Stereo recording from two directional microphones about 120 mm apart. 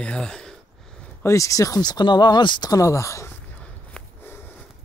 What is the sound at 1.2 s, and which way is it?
Speech, 25° left (ahead or behind).